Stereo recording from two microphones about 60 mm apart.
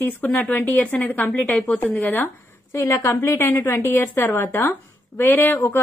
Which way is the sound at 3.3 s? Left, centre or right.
Left.